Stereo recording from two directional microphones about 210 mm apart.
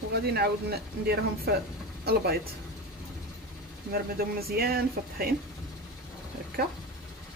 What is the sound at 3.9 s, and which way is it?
Speech, 45° right (ahead or behind).